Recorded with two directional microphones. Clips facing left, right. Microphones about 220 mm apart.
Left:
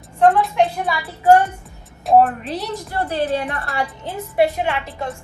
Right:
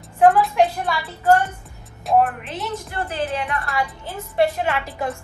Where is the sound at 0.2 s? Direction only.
Centre (ahead or behind).